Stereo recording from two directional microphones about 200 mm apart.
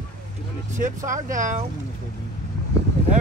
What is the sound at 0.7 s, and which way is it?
Speech, 40° right (ahead or behind).